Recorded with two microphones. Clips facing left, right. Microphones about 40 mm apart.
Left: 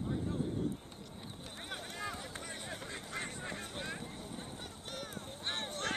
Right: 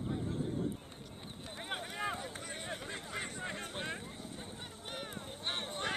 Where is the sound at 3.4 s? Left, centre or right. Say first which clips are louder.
Right 2 dB; right.